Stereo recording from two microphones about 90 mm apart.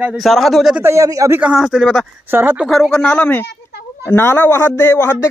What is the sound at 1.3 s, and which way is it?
Speech, 10° right (ahead or behind).